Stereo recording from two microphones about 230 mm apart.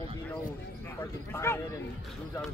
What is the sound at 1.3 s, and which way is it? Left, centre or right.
Speech, centre.